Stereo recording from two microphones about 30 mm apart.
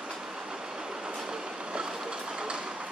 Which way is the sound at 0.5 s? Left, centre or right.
Right.